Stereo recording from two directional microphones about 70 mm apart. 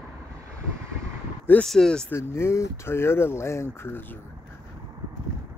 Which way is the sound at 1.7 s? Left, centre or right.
Centre.